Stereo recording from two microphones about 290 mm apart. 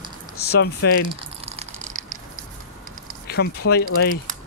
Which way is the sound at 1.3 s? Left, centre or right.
Centre.